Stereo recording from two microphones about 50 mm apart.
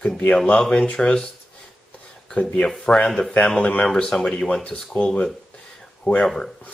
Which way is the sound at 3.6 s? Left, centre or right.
Left.